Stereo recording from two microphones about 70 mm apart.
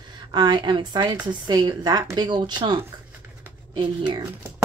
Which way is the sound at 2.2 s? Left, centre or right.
Right.